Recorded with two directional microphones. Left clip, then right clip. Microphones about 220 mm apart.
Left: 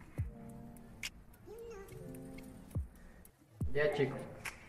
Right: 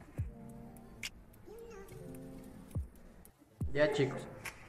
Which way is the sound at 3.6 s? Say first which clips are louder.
Right 2 dB; centre (ahead or behind).